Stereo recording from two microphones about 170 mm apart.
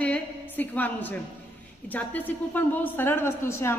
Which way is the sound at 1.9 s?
10° left (ahead or behind).